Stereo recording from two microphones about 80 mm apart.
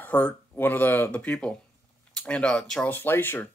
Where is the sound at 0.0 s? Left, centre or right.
Centre.